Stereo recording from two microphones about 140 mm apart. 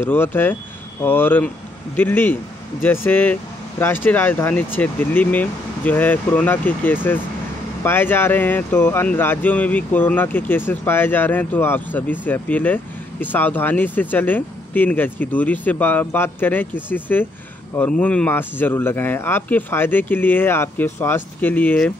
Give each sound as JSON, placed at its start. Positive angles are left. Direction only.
{"t": 0.0, "sound": "speech", "side_deg": 15}